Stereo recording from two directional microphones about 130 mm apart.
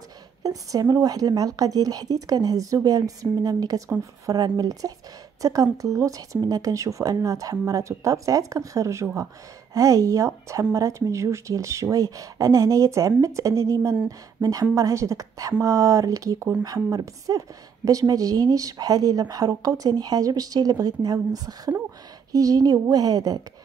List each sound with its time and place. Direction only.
0.4 s a woman's voice: 25° right (ahead or behind)